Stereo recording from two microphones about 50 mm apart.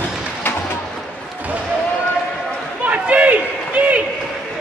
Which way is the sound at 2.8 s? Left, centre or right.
Right.